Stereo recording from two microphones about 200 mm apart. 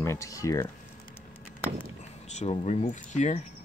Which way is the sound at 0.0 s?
15° left (ahead or behind).